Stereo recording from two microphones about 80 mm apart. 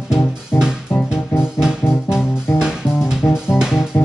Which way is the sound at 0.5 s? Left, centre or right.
Left.